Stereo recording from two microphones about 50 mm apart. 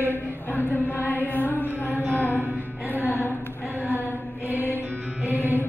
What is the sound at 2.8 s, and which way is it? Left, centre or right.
Music, left.